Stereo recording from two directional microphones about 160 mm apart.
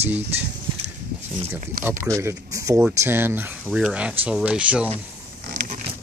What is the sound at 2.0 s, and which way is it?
Speech, 20° right (ahead or behind).